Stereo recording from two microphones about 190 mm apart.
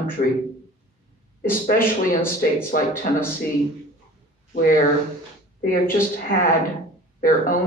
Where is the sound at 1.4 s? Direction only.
50° left (ahead or behind).